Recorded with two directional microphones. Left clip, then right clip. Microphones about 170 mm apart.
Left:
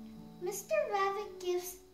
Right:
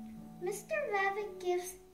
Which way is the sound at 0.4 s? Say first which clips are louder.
Left 3 dB; centre (ahead or behind).